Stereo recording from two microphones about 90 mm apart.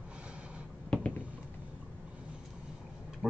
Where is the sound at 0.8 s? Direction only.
10° left (ahead or behind).